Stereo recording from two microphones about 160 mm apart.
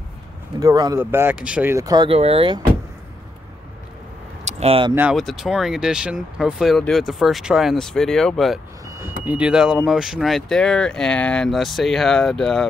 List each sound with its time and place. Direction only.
0.6 s speech: 25° right (ahead or behind)
2.0 s speech: 35° right (ahead or behind)
4.5 s speech: 40° right (ahead or behind)
5.1 s speech: centre (ahead or behind)
8.8 s vehicle: 20° right (ahead or behind)
9.2 s speech: 10° right (ahead or behind)